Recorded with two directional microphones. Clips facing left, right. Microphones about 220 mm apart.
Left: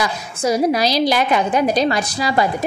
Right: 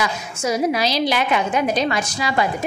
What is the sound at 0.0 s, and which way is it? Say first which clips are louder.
A woman's voice: left 3 dB; 35° left (ahead or behind).